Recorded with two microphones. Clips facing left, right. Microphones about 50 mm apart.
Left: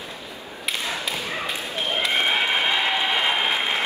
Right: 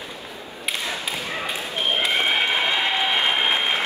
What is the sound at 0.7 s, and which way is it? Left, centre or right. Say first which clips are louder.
Thump: even; centre.